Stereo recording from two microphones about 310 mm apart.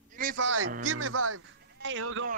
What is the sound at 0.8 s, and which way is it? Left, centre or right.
Speech, right.